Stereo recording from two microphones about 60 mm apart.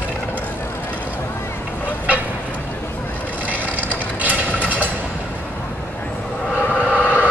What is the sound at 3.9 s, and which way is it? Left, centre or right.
Mechanisms, right.